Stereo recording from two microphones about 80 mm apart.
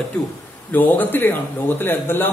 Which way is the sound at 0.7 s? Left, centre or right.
Left.